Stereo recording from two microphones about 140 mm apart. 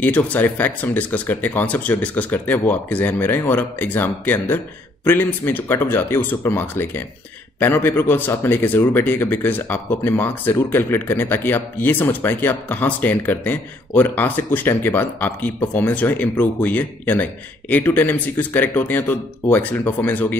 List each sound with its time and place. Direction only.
0.0 s speech: 10° left (ahead or behind)